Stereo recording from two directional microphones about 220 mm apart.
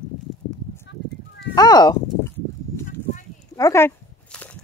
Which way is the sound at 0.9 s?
50° left (ahead or behind).